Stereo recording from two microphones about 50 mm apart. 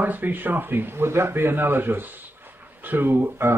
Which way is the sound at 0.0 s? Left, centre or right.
Right.